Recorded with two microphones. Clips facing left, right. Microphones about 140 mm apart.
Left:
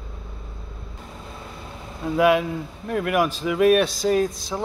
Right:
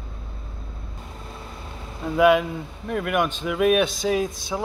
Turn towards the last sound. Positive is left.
turn(degrees=0)  # may be behind; listen again after turning